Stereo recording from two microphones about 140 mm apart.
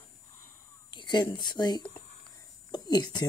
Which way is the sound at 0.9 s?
35° left (ahead or behind).